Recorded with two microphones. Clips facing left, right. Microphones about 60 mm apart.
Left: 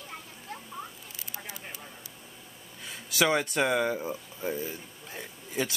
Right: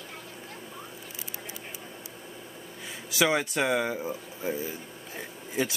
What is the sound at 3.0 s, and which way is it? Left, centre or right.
Speech, centre.